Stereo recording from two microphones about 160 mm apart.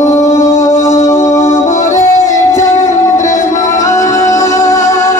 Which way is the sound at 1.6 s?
50° left (ahead or behind).